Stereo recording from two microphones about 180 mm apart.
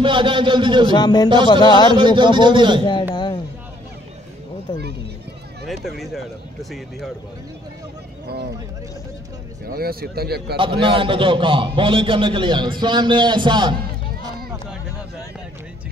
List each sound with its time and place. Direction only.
0.0 s a man's voice: 25° right (ahead or behind)
0.9 s speech: 25° left (ahead or behind)
2.0 s a man's voice: 25° right (ahead or behind)
4.7 s speech: 25° left (ahead or behind)
6.1 s speech: centre (ahead or behind)
9.7 s speech: 55° right (ahead or behind)
10.5 s a man's voice: 30° right (ahead or behind)